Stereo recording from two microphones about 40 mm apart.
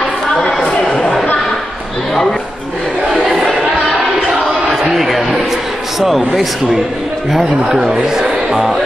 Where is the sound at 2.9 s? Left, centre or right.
Centre.